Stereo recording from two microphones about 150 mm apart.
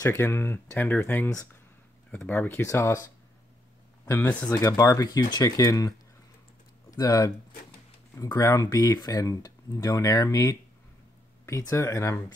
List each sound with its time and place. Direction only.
0.0 s speech: 20° left (ahead or behind)